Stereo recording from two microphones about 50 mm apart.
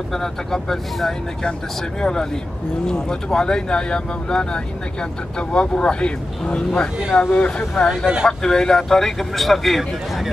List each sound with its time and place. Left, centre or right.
0.1 s speech: centre
7.9 s speech: centre
8.3 s speech: centre